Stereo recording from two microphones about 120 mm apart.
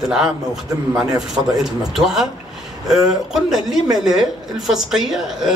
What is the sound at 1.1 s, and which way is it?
Speech, 5° right (ahead or behind).